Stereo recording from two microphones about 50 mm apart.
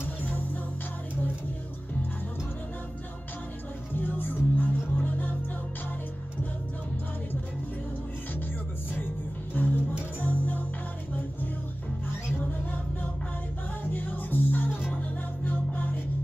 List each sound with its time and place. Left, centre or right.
0.0 s music: left
3.9 s music: left
9.6 s music: left
13.9 s music: left